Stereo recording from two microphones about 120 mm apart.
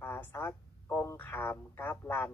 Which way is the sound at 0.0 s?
20° left (ahead or behind).